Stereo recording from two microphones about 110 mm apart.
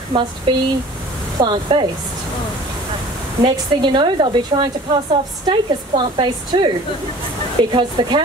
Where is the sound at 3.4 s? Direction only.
45° right (ahead or behind).